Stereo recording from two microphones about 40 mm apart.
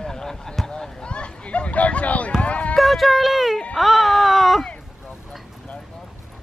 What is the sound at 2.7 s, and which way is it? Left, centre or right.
Speech, centre.